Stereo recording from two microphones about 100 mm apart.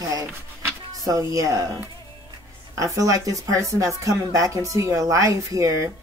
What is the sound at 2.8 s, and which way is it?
Speech, 35° right (ahead or behind).